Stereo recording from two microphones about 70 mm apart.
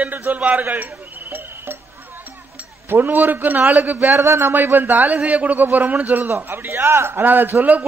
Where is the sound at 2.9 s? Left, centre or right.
Right.